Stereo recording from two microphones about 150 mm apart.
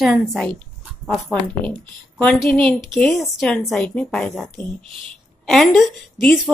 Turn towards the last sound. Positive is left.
turn(degrees=0)  # may be behind; listen again after turning